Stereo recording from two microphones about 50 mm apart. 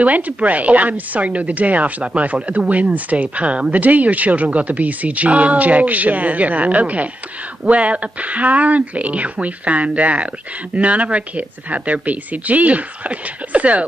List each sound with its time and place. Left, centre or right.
0.0 s speech: right